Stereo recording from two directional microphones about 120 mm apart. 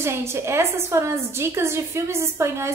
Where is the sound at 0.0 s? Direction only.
20° right (ahead or behind).